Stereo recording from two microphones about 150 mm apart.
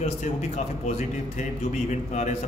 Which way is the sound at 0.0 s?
50° left (ahead or behind).